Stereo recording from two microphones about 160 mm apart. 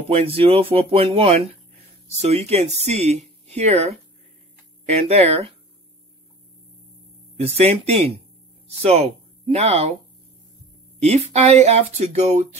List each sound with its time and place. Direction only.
0.1 s speech: 40° right (ahead or behind)
7.3 s speech: 40° right (ahead or behind)
11.0 s speech: 45° right (ahead or behind)